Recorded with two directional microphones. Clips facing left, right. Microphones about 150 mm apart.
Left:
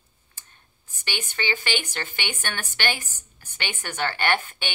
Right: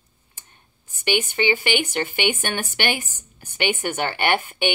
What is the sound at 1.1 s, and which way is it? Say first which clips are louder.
A woman's voice: right 9 dB; 15° right (ahead or behind).